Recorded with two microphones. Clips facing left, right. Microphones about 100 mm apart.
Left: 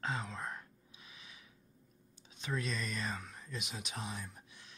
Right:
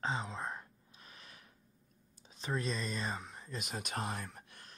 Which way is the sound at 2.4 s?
35° right (ahead or behind).